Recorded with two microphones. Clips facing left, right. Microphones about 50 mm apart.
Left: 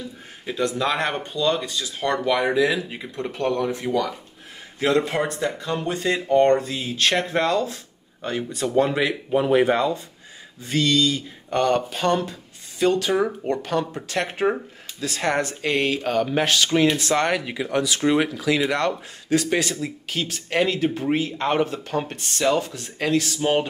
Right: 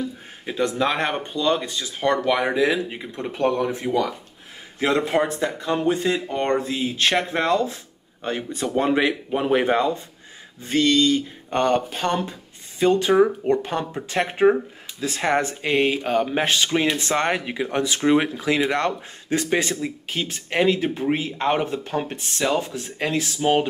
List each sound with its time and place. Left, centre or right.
0.6 s speech: right
10.6 s speech: right; by 16.9 s centre
16.9 s speech: right; by 23.7 s centre